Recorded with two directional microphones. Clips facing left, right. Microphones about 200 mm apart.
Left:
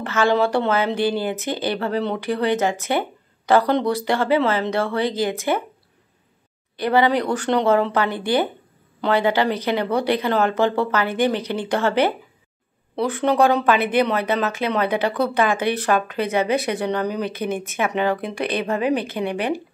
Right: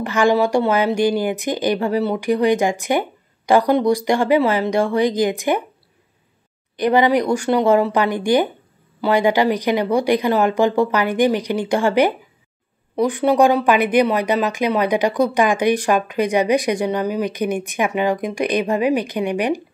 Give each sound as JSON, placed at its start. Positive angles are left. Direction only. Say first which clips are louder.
{"t": 0.0, "sound": "speech", "louder": "right 3 dB", "side_deg": -15}
{"t": 6.8, "sound": "speech", "louder": "right 3 dB", "side_deg": -15}